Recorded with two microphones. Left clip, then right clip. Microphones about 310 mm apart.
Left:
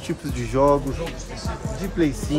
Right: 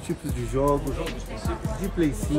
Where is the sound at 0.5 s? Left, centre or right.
Left.